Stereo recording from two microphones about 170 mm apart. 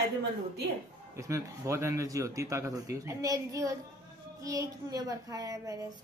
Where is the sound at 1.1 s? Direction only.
20° right (ahead or behind).